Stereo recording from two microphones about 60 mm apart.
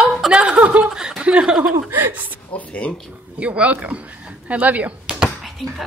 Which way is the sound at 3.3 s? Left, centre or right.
Right.